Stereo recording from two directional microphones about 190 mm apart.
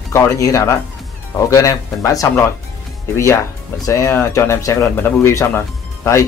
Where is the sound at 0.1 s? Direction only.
15° left (ahead or behind).